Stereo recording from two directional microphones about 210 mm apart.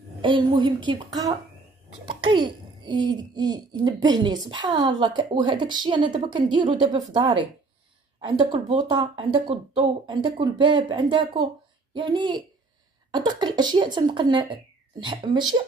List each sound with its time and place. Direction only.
0.2 s a child's voice: 25° right (ahead or behind)